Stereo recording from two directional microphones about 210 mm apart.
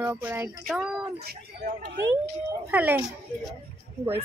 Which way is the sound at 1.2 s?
45° right (ahead or behind).